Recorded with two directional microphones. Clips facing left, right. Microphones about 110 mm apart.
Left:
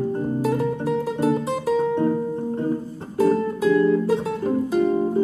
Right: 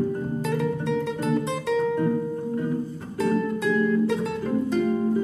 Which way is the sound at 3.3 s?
40° left (ahead or behind).